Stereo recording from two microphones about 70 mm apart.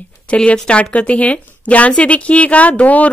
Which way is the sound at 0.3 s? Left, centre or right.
Centre.